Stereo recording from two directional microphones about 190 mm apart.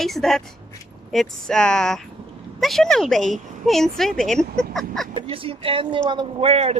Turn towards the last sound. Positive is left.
turn(degrees=-35)  # may be behind; listen again after turning